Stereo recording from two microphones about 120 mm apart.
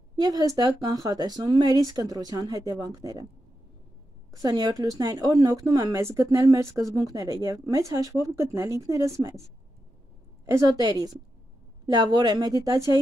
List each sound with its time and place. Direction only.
0.1 s speech: 30° right (ahead or behind)
4.4 s speech: 35° right (ahead or behind)
10.8 s speech: 35° right (ahead or behind)